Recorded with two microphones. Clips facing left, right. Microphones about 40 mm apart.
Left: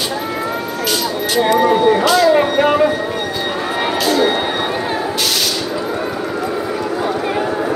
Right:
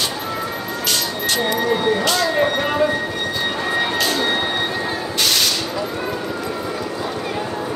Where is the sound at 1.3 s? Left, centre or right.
Centre.